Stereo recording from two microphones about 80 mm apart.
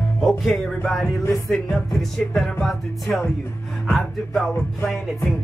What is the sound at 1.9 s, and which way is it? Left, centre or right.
Music, centre.